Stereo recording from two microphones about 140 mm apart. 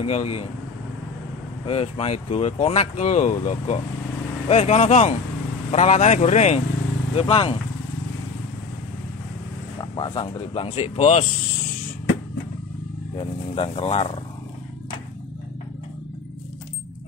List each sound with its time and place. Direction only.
0.0 s speech: 50° left (ahead or behind)
1.7 s speech: 45° left (ahead or behind)
9.8 s speech: 30° left (ahead or behind); by 11.2 s 55° left (ahead or behind)
13.6 s speech: 45° left (ahead or behind)